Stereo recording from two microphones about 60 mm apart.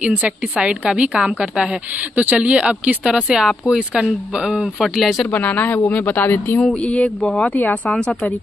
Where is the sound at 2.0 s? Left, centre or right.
Right.